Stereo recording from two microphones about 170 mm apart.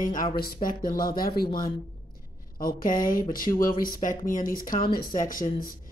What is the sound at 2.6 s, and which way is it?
Speech, 55° left (ahead or behind).